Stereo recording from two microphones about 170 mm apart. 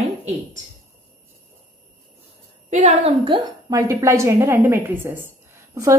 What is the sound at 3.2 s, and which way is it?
Speech, 30° right (ahead or behind).